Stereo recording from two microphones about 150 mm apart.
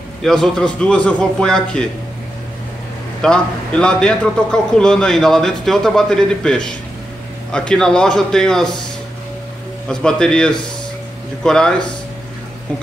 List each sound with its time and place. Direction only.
0.2 s a man's voice: 5° left (ahead or behind)
3.2 s a man's voice: 5° left (ahead or behind)
9.8 s a man's voice: 5° left (ahead or behind)